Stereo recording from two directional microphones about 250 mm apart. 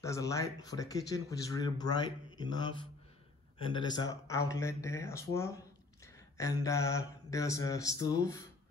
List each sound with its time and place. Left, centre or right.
0.0 s a man's voice: centre